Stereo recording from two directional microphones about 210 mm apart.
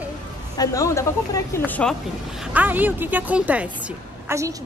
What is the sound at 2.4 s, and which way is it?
A woman's voice, 5° right (ahead or behind).